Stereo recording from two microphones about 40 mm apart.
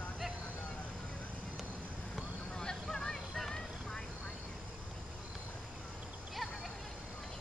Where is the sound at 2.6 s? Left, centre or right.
Centre.